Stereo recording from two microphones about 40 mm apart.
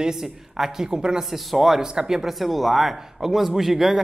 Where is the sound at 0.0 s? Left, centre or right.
Centre.